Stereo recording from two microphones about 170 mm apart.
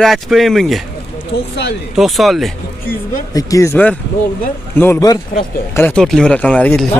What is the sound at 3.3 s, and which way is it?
Speech, 20° left (ahead or behind).